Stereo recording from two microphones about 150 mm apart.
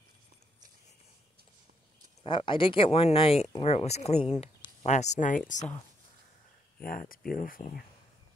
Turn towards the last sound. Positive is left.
turn(degrees=70)  # may be behind; listen again after turning